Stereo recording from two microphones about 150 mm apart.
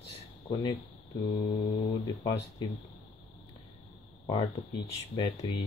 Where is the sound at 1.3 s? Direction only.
75° left (ahead or behind).